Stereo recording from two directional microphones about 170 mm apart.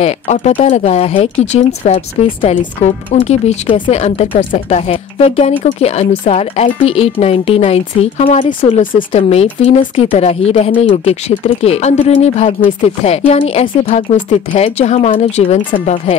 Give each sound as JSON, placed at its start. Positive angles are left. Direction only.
{"t": 0.0, "sound": "speech", "side_deg": 40}
{"t": 8.9, "sound": "speech", "side_deg": 35}